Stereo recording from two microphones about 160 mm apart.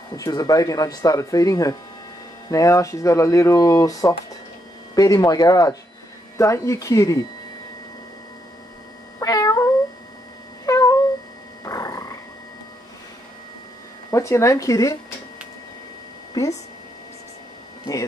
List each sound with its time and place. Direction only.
0.1 s speech: 20° left (ahead or behind)
9.2 s cat: 20° left (ahead or behind)
11.6 s a sound: 20° left (ahead or behind)
14.1 s speech: 20° left (ahead or behind)